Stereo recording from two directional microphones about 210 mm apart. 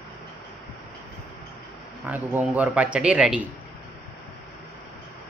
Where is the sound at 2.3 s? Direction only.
5° right (ahead or behind).